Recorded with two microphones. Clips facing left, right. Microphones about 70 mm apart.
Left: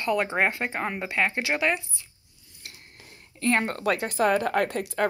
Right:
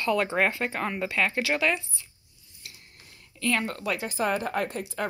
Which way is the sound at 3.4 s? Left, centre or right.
Left.